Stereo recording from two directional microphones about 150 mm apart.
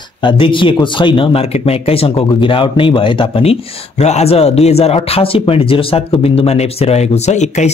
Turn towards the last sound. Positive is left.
turn(degrees=50)  # may be behind; listen again after turning